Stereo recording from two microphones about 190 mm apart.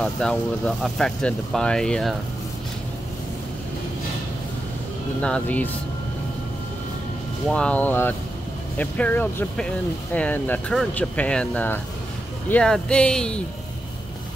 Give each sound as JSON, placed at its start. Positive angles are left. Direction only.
{"t": 0.0, "sound": "speech", "side_deg": 5}
{"t": 5.2, "sound": "speech", "side_deg": 5}
{"t": 7.4, "sound": "speech", "side_deg": 5}